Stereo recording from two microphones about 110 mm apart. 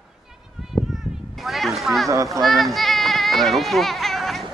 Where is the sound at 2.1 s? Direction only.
30° right (ahead or behind).